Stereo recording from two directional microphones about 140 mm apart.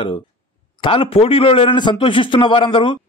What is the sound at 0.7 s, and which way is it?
A man's voice, 35° left (ahead or behind).